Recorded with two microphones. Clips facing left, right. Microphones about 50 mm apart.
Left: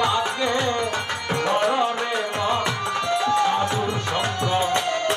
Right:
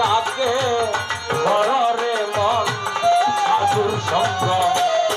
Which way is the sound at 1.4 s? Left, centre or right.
Right.